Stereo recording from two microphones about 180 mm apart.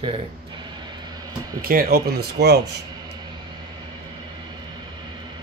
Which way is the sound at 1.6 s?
55° right (ahead or behind).